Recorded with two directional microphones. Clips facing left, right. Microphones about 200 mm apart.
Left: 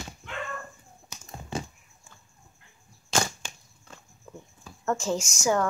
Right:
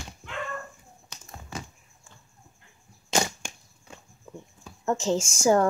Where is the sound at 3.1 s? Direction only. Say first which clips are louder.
Right 2 dB; 15° right (ahead or behind).